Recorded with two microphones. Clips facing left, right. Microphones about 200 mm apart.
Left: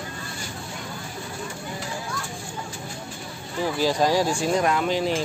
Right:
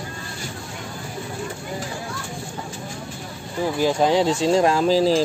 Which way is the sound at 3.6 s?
15° right (ahead or behind).